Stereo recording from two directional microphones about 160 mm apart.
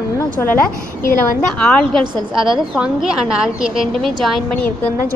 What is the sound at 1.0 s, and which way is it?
Speech, 60° left (ahead or behind).